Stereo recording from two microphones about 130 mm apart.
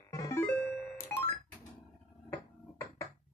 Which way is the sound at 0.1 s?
25° left (ahead or behind).